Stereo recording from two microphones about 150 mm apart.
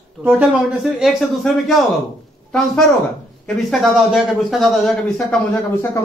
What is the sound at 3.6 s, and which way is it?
Speech, centre (ahead or behind).